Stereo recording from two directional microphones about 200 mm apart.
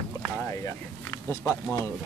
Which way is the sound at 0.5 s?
15° left (ahead or behind).